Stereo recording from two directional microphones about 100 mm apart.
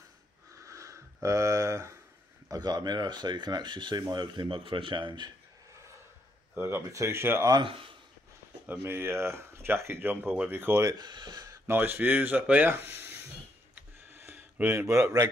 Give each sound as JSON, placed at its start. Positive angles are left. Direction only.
{"t": 0.6, "sound": "a sound", "side_deg": -35}
{"t": 2.4, "sound": "speech", "side_deg": -40}
{"t": 6.5, "sound": "speech", "side_deg": -20}
{"t": 7.6, "sound": "speech", "side_deg": -60}
{"t": 8.6, "sound": "speech", "side_deg": -25}
{"t": 10.9, "sound": "speech", "side_deg": -45}
{"t": 11.6, "sound": "speech", "side_deg": -20}
{"t": 14.1, "sound": "a sound", "side_deg": -20}
{"t": 14.9, "sound": "a man's voice", "side_deg": -30}